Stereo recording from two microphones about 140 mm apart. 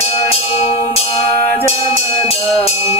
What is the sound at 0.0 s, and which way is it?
Music, 45° left (ahead or behind).